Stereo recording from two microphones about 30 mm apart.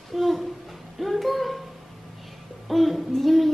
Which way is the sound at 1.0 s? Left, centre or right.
Centre.